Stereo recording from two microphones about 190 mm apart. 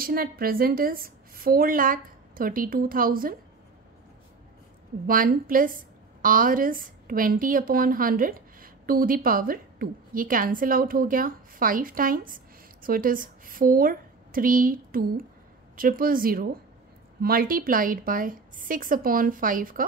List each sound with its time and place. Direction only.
0.0 s a woman's voice: 50° right (ahead or behind)
5.0 s a woman's voice: 45° right (ahead or behind)